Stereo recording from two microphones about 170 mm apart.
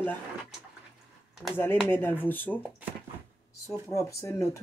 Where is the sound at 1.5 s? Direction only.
15° left (ahead or behind).